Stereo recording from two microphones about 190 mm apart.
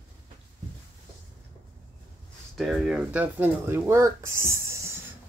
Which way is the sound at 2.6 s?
Centre (ahead or behind).